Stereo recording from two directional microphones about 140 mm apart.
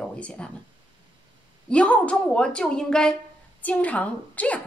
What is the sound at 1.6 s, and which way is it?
A woman's voice, 10° left (ahead or behind).